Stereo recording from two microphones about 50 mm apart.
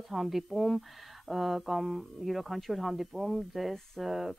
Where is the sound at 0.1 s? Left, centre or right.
Centre.